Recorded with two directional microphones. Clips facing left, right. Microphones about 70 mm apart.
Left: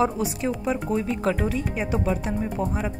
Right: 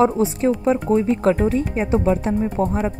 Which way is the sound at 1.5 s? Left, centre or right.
Right.